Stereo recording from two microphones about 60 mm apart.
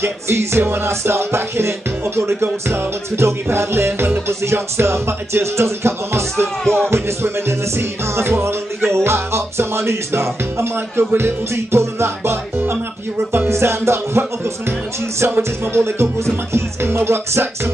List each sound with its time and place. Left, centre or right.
0.0 s music: right
6.4 s speech: centre
6.9 s music: right